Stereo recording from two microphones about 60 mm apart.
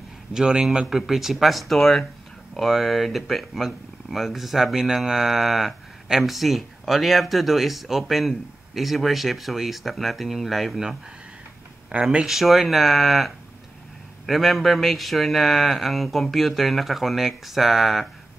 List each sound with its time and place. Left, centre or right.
0.3 s a man's voice: centre
11.9 s speech: centre
12.3 s speech: centre